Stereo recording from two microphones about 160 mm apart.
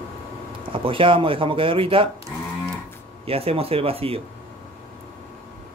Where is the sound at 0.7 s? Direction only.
35° right (ahead or behind).